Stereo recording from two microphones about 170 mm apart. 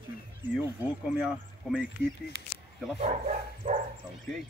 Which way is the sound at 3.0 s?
40° right (ahead or behind).